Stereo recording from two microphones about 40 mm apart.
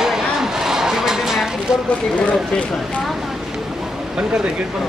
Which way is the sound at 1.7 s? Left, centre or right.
Centre.